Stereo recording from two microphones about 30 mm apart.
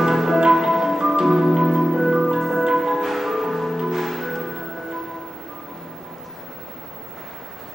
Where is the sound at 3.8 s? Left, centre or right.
Centre.